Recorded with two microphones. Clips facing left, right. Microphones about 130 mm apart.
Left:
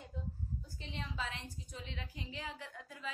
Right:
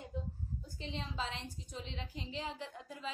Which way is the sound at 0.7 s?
25° right (ahead or behind).